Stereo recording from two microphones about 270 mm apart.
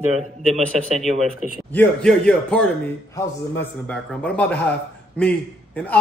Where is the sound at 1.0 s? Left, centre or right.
Right.